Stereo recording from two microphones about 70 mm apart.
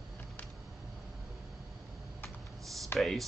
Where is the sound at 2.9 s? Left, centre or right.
Left.